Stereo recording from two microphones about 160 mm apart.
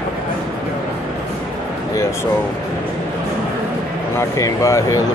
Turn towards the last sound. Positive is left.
turn(degrees=20)  # may be behind; listen again after turning